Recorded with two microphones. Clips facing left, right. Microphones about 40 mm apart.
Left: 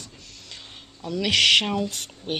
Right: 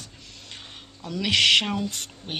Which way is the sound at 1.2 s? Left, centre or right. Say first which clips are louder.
Left 1 dB; centre.